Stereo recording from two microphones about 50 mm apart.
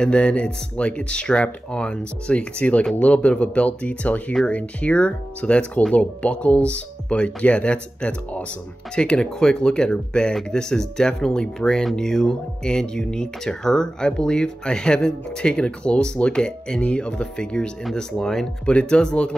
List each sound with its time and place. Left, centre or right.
0.0 s speech: left
18.7 s speech: left